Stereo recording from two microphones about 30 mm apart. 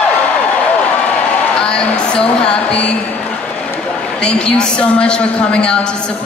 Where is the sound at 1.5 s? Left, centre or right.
Left.